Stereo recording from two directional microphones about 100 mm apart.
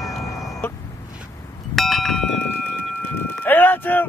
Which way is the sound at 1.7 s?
Centre (ahead or behind).